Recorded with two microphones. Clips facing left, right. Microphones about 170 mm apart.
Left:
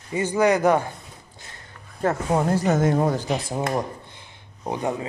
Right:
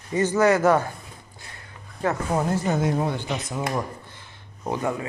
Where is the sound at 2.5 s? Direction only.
40° left (ahead or behind).